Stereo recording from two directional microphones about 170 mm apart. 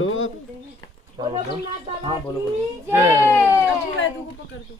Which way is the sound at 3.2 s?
15° left (ahead or behind).